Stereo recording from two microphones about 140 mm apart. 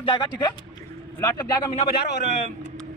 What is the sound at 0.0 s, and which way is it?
A woman's voice, 35° left (ahead or behind).